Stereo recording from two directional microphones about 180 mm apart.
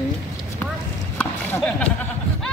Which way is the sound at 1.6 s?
5° left (ahead or behind).